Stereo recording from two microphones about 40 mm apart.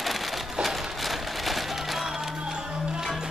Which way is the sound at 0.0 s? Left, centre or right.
Centre.